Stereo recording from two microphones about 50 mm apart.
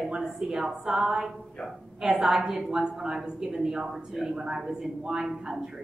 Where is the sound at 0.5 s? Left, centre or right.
Centre.